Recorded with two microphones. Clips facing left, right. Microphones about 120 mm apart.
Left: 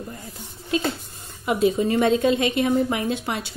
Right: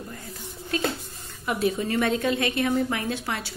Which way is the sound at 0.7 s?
20° left (ahead or behind).